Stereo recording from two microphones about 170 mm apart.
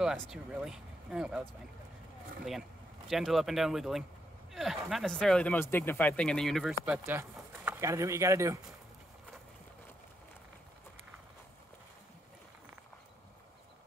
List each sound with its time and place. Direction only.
0.0 s speech: 5° right (ahead or behind)
3.1 s speech: centre (ahead or behind)
6.7 s speech: 15° right (ahead or behind)